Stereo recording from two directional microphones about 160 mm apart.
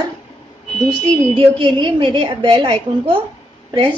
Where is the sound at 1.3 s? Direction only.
30° right (ahead or behind).